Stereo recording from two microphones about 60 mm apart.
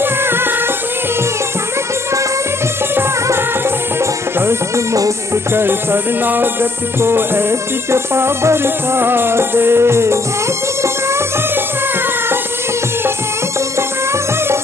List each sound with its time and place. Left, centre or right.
0.0 s music: right
4.0 s music: right